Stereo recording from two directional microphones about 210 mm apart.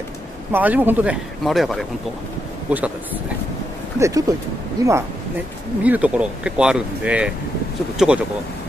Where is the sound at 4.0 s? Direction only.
15° right (ahead or behind).